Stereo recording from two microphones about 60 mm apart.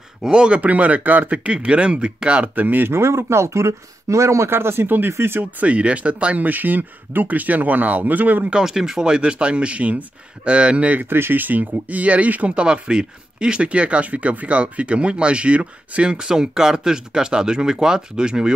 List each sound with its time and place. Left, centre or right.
0.3 s speech: centre; by 3.0 s right
3.0 s speech: right
5.6 s speech: right
8.5 s speech: centre
11.1 s speech: right; by 18.5 s centre